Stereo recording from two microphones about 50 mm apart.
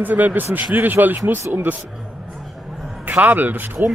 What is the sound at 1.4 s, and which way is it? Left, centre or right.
Speech, right.